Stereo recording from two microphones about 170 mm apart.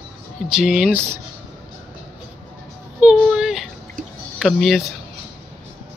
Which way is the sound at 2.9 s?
5° right (ahead or behind).